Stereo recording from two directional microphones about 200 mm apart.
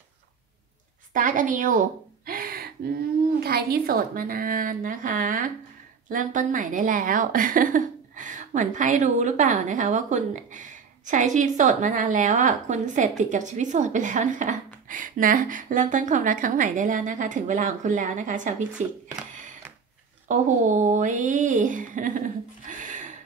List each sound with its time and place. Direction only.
1.1 s a sound: 40° right (ahead or behind)
3.4 s a woman's voice: 50° right (ahead or behind)
20.2 s a woman's voice: 40° right (ahead or behind)